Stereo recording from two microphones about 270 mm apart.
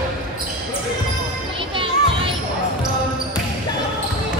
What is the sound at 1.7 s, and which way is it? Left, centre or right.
Children playing, centre.